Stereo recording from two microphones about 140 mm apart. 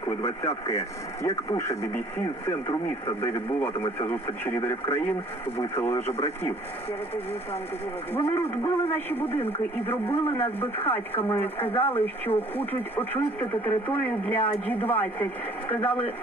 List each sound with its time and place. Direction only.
0.7 s speech: 20° left (ahead or behind)
3.1 s speech: 20° left (ahead or behind)
8.1 s a man's voice: 15° left (ahead or behind)